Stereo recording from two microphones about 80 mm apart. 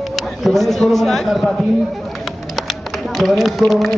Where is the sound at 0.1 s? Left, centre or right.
Centre.